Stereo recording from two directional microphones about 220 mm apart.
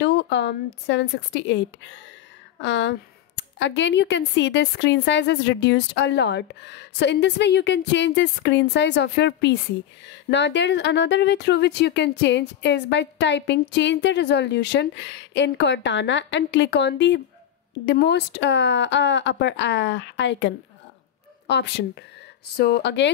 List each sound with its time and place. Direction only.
0.0 s speech: 50° left (ahead or behind)